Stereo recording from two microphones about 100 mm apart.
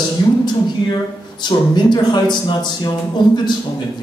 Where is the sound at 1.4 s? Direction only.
50° left (ahead or behind).